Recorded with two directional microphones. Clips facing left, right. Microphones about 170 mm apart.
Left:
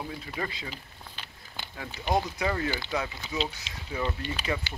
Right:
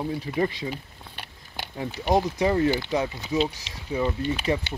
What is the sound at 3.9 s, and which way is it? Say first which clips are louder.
Speech: right 7 dB; 15° right (ahead or behind).